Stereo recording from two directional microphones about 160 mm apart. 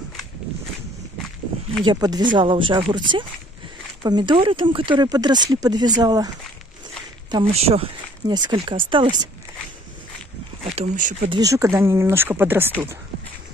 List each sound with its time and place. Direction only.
1.9 s speech: 25° right (ahead or behind)
7.5 s speech: 40° right (ahead or behind)
8.3 s speech: 30° right (ahead or behind)
10.6 s speech: 40° right (ahead or behind)
11.2 s speech: 25° right (ahead or behind)